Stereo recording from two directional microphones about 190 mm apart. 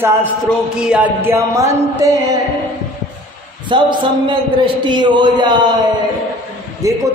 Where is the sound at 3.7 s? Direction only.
25° right (ahead or behind).